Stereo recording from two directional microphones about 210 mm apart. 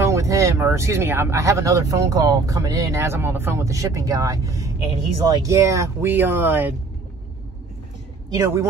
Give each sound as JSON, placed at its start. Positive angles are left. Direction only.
{"t": 0.0, "sound": "speech", "side_deg": -15}
{"t": 8.3, "sound": "speech", "side_deg": -15}